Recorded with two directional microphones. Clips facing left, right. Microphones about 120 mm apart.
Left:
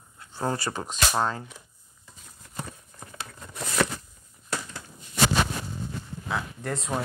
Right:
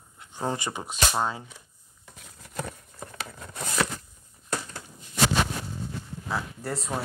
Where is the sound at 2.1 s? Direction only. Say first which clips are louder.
Right 3 dB; 80° right.